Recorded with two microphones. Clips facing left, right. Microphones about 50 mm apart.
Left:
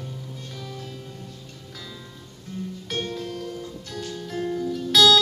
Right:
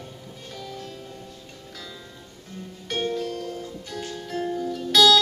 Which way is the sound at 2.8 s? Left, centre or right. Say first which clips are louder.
Right 5 dB; centre.